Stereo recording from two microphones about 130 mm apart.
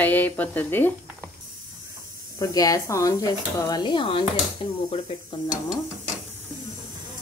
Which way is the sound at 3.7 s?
35° left (ahead or behind).